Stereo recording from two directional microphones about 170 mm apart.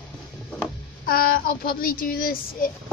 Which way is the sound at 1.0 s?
60° left (ahead or behind).